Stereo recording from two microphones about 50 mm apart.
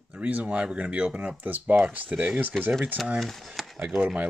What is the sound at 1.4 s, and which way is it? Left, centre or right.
Speech, right.